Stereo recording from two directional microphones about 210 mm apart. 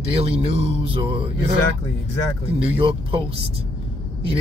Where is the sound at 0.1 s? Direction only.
25° right (ahead or behind).